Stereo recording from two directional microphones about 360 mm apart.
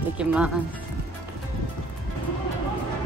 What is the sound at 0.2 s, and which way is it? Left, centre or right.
Speech, centre.